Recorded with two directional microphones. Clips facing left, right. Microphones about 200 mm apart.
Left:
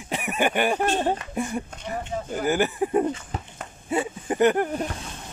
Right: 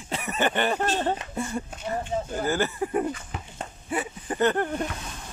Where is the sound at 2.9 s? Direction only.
30° left (ahead or behind); by 4.9 s 10° left (ahead or behind).